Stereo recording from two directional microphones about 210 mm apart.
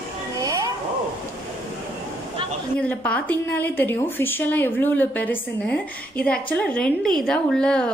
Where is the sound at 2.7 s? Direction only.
5° left (ahead or behind).